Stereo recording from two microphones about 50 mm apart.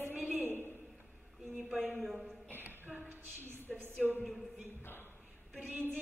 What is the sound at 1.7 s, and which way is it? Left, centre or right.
Speech, centre.